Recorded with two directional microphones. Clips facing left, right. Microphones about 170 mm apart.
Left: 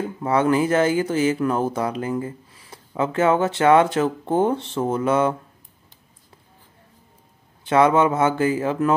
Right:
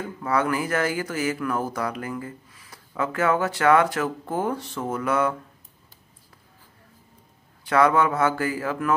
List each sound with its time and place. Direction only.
0.0 s speech: 25° left (ahead or behind)
7.6 s speech: 25° left (ahead or behind)